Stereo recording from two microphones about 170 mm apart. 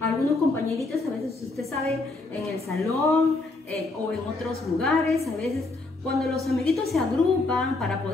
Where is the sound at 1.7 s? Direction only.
40° right (ahead or behind).